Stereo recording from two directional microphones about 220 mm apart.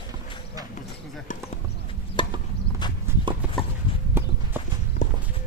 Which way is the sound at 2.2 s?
20° left (ahead or behind).